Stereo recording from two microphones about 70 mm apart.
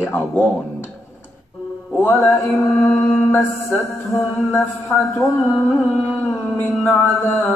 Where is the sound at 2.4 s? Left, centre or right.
Left.